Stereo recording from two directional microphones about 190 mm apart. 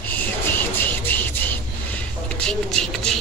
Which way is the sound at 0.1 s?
10° left (ahead or behind).